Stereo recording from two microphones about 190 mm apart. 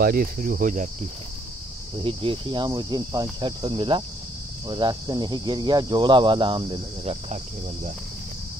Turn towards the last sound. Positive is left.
turn(degrees=-35)  # may be behind; listen again after turning